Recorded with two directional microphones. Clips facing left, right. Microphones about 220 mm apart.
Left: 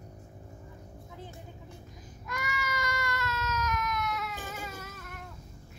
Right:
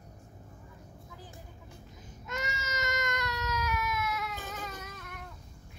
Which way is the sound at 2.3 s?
25° right (ahead or behind).